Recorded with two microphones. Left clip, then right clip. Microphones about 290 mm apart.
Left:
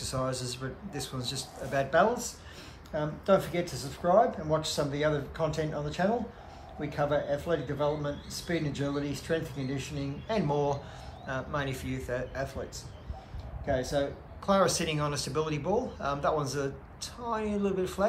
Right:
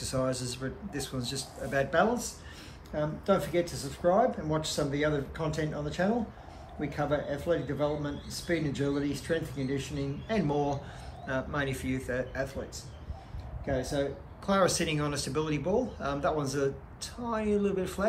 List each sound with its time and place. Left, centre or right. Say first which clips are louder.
0.0 s a man's voice: right 1 dB; centre
13.8 s speech: left 1 dB; centre